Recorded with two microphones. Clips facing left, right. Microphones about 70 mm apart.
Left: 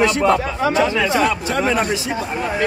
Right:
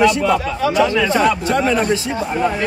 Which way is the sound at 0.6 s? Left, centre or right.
Left.